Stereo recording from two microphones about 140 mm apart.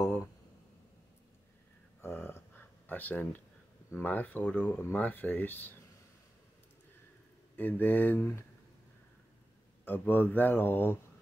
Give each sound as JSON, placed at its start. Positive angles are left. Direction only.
{"t": 2.0, "sound": "a sound", "side_deg": 15}
{"t": 3.9, "sound": "speech", "side_deg": 15}
{"t": 7.5, "sound": "speech", "side_deg": 15}
{"t": 9.8, "sound": "speech", "side_deg": 15}